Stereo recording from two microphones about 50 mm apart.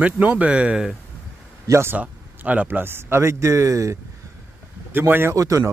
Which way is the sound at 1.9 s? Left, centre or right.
Right.